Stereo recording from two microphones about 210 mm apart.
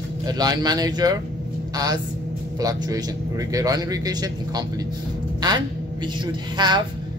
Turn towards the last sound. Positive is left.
turn(degrees=-20)  # may be behind; listen again after turning